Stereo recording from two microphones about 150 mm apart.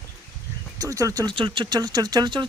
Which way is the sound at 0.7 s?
20° right (ahead or behind).